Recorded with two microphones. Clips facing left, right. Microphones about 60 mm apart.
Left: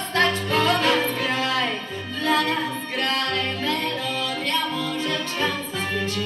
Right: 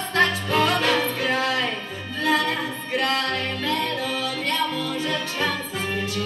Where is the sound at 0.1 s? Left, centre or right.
Centre.